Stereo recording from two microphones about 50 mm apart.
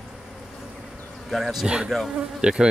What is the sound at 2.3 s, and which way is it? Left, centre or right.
Insect, centre.